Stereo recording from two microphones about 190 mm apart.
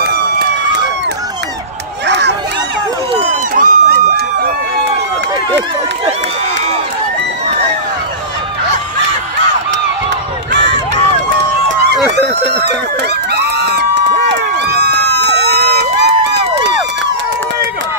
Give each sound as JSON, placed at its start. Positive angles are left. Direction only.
{"t": 2.0, "sound": "crowd", "side_deg": -65}
{"t": 3.5, "sound": "a sound", "side_deg": -45}
{"t": 10.5, "sound": "run", "side_deg": -70}
{"t": 13.3, "sound": "a sound", "side_deg": -60}
{"t": 14.3, "sound": "crowd", "side_deg": -60}
{"t": 16.3, "sound": "music", "side_deg": -65}